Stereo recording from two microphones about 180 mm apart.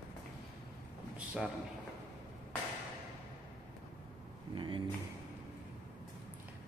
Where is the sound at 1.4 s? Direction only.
5° right (ahead or behind).